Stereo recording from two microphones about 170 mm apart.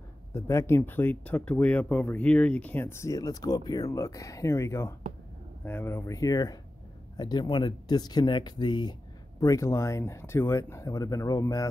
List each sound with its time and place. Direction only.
0.3 s speech: 15° left (ahead or behind)